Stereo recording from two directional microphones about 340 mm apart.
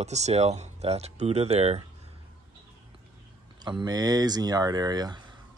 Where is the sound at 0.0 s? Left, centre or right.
Centre.